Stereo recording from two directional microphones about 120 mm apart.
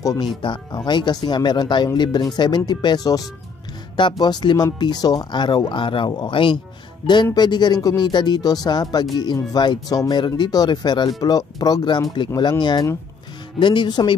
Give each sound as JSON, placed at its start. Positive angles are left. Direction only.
{"t": 0.0, "sound": "speech", "side_deg": 30}
{"t": 0.4, "sound": "speech", "side_deg": 45}